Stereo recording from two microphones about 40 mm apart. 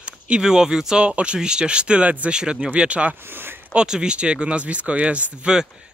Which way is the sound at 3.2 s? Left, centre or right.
Right.